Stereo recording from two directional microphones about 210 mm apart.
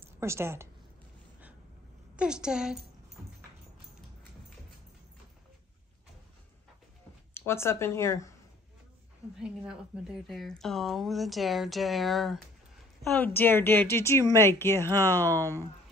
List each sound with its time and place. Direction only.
0.2 s a woman's voice: 10° right (ahead or behind)
2.1 s a woman's voice: 5° right (ahead or behind)
7.3 s speech: 10° left (ahead or behind)
9.4 s a woman's voice: 5° right (ahead or behind)
15.3 s a woman's voice: 15° right (ahead or behind)